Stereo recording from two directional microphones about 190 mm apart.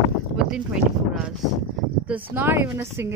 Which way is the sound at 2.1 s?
10° right (ahead or behind).